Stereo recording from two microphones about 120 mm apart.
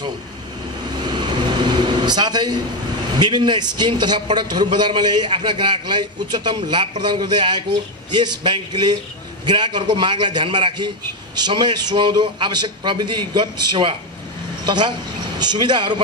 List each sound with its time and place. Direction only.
1.0 s air conditioning: 40° right (ahead or behind)
3.2 s a man's voice: 40° right (ahead or behind)